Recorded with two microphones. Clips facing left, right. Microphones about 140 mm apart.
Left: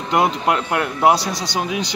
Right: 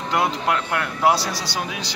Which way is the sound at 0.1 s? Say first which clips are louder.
Left 4 dB; 20° left (ahead or behind).